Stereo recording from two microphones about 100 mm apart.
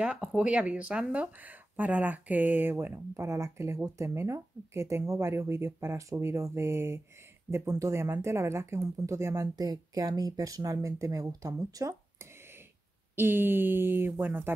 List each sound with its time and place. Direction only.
0.0 s speech: 5° right (ahead or behind); by 12.3 s 35° right (ahead or behind)
13.1 s speech: 20° right (ahead or behind)